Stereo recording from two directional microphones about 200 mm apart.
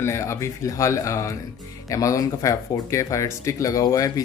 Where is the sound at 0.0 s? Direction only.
15° left (ahead or behind).